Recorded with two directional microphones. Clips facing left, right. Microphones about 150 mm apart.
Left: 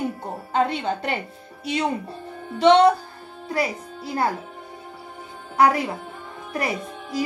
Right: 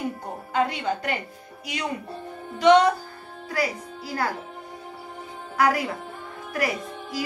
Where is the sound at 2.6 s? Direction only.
30° left (ahead or behind).